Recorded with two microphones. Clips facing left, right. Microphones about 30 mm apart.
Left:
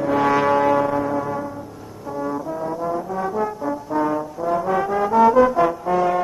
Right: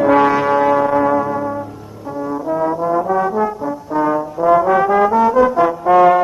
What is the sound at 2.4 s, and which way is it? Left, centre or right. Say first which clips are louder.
Brass instrument: right 8 dB; right.